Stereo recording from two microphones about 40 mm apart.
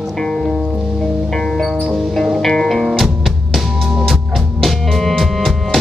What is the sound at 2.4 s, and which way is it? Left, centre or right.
Music, centre.